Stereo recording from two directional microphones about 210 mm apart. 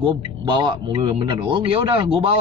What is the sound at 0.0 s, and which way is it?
A man's voice, 20° right (ahead or behind).